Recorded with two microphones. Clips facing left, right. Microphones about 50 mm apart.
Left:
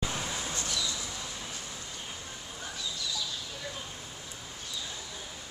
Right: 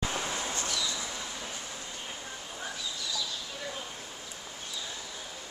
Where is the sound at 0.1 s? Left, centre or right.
Centre.